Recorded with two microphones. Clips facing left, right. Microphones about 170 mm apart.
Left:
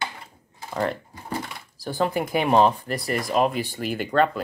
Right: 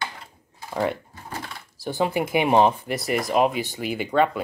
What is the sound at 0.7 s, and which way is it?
Speech, 5° right (ahead or behind).